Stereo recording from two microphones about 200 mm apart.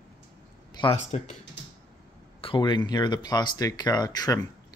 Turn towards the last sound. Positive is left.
turn(degrees=20)  # may be behind; listen again after turning